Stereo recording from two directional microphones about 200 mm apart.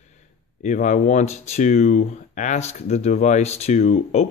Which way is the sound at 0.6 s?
40° left (ahead or behind).